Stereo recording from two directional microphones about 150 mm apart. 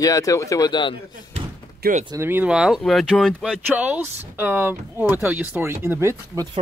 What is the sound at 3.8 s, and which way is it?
Speech, 10° right (ahead or behind).